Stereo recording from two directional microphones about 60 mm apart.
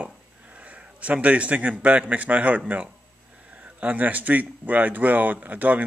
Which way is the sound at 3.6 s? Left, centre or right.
Right.